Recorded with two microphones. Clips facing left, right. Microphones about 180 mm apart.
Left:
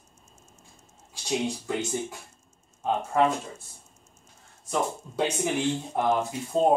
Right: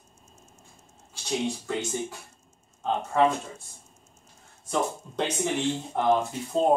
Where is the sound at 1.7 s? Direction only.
15° left (ahead or behind).